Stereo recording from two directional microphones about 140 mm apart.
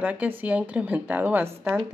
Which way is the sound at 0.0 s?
10° right (ahead or behind).